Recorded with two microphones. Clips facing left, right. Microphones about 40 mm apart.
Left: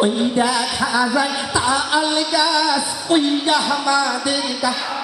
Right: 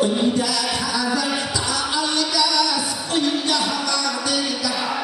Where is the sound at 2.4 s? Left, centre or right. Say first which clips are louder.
Left 4 dB; left.